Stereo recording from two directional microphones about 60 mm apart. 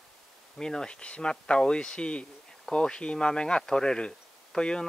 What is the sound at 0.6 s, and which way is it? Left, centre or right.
Speech, centre.